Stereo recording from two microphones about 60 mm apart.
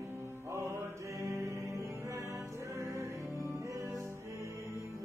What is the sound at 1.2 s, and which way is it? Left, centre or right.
Mantra, right.